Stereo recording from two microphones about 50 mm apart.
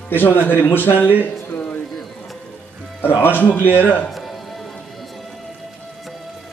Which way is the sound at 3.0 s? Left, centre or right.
Left.